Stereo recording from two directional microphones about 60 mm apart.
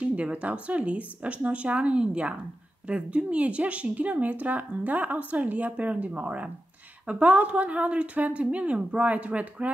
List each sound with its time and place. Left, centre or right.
0.0 s speech: right